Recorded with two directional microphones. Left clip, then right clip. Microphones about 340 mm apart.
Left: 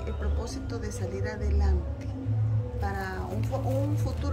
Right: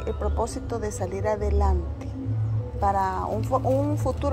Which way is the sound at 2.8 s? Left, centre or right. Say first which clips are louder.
Right 12 dB; centre.